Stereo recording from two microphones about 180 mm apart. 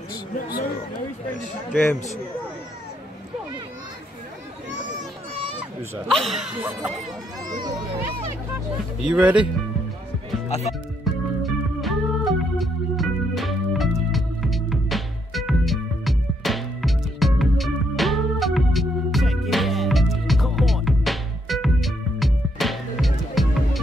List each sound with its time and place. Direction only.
1.7 s speech: 5° left (ahead or behind)
6.0 s speech: centre (ahead or behind)
7.6 s a child's voice: 25° right (ahead or behind)
9.0 s speech: 5° right (ahead or behind)
11.1 s organ: centre (ahead or behind)
11.4 s music: centre (ahead or behind)